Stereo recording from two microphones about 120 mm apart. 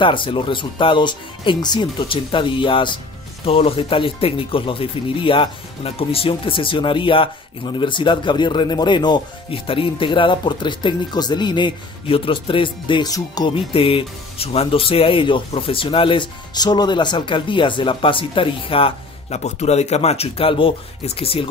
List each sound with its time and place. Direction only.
0.0 s speech: 45° left (ahead or behind)
13.5 s speech: 50° left (ahead or behind)
19.3 s speech: 65° left (ahead or behind)